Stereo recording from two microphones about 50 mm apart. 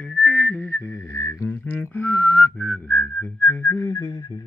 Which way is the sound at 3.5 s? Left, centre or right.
Left.